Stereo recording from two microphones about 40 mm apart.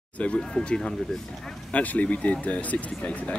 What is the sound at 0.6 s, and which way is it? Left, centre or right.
Speech, centre.